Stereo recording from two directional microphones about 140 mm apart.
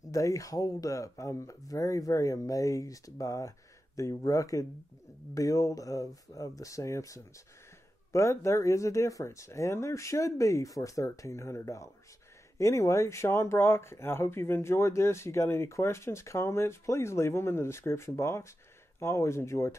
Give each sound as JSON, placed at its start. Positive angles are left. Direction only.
{"t": 0.1, "sound": "speech", "side_deg": 25}